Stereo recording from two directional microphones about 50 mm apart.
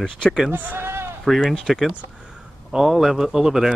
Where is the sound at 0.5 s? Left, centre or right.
Right.